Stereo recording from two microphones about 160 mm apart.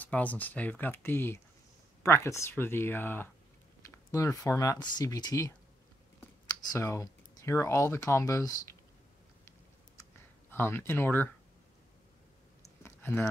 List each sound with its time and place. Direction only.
0.0 s speech: 10° left (ahead or behind)
6.7 s speech: 20° left (ahead or behind)
10.5 s speech: 15° left (ahead or behind)
12.6 s clicking: 15° left (ahead or behind)